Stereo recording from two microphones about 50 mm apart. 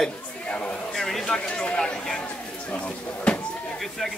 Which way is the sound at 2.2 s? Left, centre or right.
Left.